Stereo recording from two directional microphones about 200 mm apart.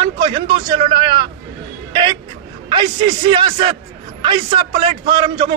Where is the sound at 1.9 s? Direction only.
25° right (ahead or behind).